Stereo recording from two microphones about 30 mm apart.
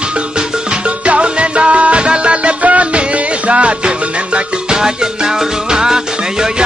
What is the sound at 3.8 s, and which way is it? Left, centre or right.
Music, right.